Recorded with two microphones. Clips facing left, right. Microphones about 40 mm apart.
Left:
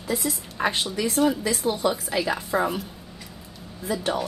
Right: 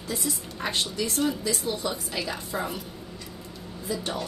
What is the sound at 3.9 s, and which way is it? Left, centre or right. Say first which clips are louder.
Speech: left 5 dB; centre.